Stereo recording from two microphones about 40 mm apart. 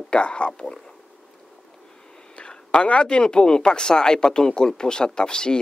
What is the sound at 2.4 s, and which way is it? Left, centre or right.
Speech, left.